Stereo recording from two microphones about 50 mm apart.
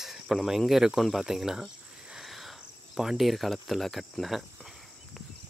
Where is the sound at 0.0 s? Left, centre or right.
Centre.